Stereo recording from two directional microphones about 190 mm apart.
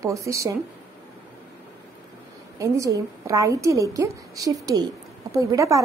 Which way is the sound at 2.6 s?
15° right (ahead or behind).